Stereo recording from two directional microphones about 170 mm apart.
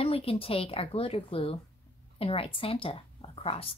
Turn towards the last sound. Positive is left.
turn(degrees=35)  # may be behind; listen again after turning